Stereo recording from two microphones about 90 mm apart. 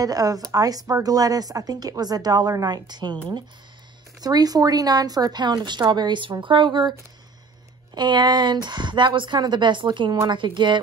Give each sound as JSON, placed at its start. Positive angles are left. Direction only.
{"t": 0.0, "sound": "a woman's voice", "side_deg": -40}
{"t": 4.2, "sound": "a woman's voice", "side_deg": -45}